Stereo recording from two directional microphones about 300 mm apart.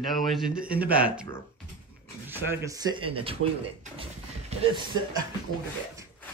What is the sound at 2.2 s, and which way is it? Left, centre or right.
Speech, centre.